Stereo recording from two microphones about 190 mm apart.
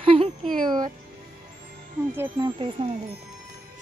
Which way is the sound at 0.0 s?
30° right (ahead or behind).